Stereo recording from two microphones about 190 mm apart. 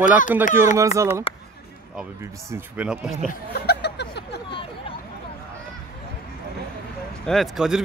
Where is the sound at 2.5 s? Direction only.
5° right (ahead or behind).